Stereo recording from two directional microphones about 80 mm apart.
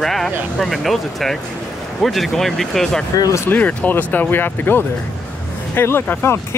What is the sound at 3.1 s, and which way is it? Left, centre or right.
Speech, left.